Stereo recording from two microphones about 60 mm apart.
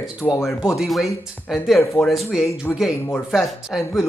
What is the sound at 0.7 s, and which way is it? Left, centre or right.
A man's voice, centre.